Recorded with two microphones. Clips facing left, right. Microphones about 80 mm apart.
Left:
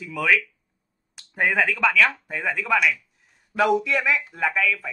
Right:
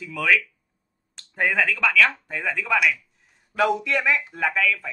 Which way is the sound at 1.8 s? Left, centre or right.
Centre.